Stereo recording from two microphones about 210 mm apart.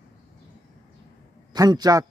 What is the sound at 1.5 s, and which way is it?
Speech, 20° right (ahead or behind).